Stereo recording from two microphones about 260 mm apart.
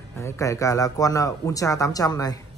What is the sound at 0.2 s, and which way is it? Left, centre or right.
Speech, centre.